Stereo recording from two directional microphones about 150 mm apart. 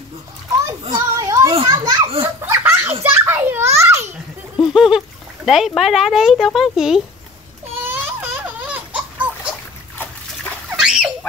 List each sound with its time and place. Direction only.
0.7 s children playing: 25° right (ahead or behind)
2.2 s laughter: 15° right (ahead or behind)
3.0 s children playing: 15° right (ahead or behind)
4.7 s speech: 5° right (ahead or behind)
7.7 s baby laughter: 15° right (ahead or behind)
10.8 s dog: 5° right (ahead or behind)